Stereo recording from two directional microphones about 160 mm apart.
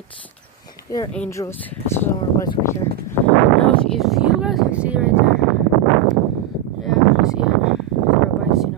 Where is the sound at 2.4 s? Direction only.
15° left (ahead or behind).